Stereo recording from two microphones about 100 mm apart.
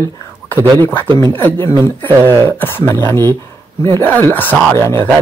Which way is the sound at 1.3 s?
20° left (ahead or behind).